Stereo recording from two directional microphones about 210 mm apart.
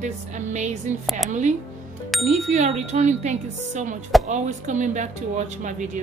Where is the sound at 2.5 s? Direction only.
35° right (ahead or behind).